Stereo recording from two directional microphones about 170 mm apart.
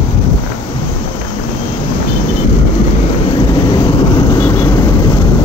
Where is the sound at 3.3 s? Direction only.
30° left (ahead or behind).